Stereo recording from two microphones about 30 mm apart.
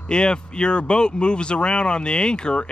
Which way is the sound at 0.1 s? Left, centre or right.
Left.